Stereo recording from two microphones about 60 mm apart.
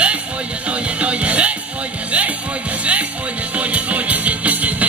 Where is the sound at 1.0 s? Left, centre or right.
Right.